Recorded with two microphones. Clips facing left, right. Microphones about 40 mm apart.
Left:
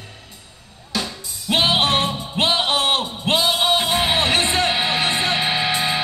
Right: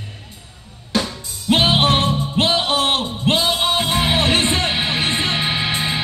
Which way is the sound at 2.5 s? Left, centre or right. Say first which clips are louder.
Right 1 dB; left.